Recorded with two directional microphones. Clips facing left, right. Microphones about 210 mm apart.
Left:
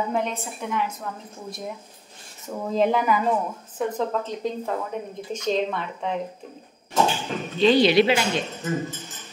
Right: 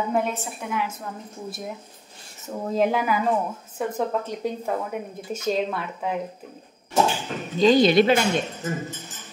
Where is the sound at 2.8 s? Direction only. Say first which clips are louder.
Left 1 dB; 5° right (ahead or behind).